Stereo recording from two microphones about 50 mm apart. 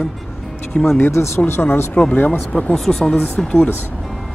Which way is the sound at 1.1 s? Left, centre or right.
Left.